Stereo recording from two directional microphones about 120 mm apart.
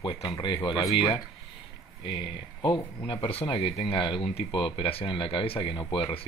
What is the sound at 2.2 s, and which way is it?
Speech, 45° left (ahead or behind).